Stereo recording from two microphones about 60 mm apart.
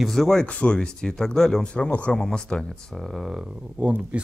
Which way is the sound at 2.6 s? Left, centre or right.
Centre.